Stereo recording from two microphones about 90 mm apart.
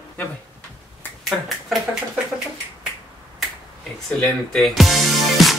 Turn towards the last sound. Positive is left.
turn(degrees=0)  # may be behind; listen again after turning